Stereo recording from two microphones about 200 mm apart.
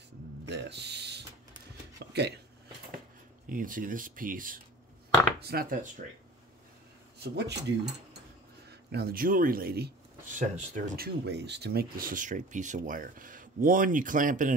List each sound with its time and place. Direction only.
0.5 s a sound: 60° right (ahead or behind)
3.4 s a man's voice: 40° right (ahead or behind)
7.3 s mechanisms: 60° right (ahead or behind)
8.6 s a man's voice: 50° right (ahead or behind)